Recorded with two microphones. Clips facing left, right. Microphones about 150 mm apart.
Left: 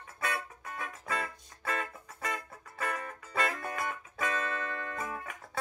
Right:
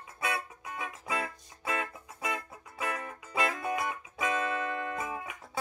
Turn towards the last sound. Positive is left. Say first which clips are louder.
# right 2 dB
turn(degrees=-10)  # may be behind; listen again after turning